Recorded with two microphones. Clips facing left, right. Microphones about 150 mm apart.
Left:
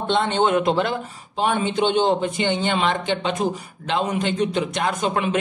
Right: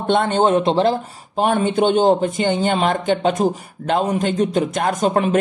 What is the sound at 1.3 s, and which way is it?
A man's voice, 50° right (ahead or behind).